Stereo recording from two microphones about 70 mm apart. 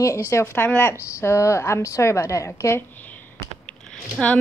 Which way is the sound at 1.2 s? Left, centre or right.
Left.